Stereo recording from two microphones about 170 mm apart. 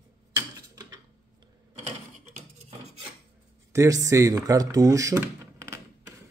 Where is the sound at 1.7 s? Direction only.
45° right (ahead or behind).